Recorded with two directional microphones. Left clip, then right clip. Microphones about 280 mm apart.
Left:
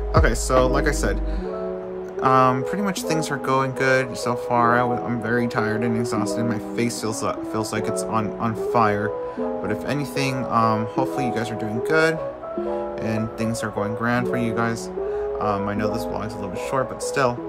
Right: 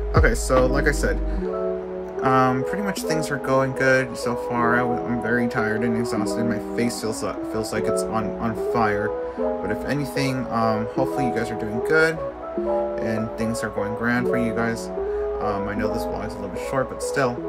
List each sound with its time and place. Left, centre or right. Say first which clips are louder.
0.1 s speech: even; centre
2.2 s speech: left 2 dB; centre